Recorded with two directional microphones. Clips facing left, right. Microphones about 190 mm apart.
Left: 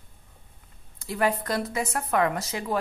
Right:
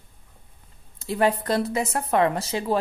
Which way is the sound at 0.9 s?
25° right (ahead or behind).